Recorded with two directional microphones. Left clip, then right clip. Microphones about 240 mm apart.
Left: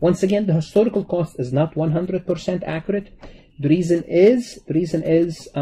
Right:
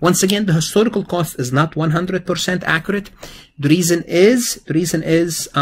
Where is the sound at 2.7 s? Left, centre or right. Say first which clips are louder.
Right 6 dB; centre.